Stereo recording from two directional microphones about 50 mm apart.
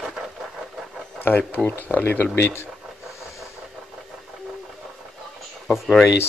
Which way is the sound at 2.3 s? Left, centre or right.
Left.